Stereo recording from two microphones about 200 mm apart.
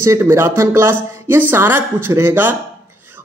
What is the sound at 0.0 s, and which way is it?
A woman's voice, 15° right (ahead or behind).